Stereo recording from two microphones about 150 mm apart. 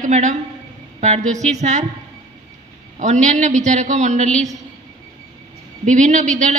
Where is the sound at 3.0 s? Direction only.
55° right (ahead or behind).